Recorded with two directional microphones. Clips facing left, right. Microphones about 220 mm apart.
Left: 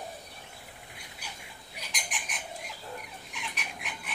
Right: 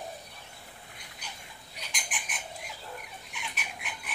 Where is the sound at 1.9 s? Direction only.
Centre (ahead or behind).